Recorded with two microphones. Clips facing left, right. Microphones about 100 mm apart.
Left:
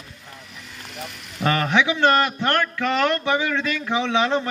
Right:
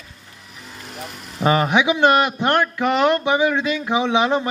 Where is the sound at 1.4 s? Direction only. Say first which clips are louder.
Right 3 dB; 15° right (ahead or behind).